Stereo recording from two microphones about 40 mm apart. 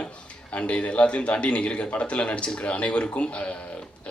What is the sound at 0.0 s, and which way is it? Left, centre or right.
A man's voice, left.